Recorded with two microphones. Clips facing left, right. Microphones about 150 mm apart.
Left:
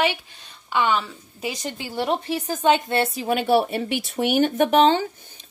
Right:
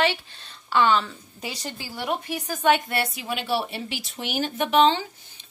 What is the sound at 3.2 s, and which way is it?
A woman's voice, 50° left (ahead or behind).